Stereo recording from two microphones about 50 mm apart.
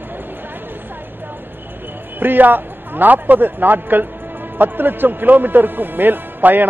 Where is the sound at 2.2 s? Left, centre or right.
Right.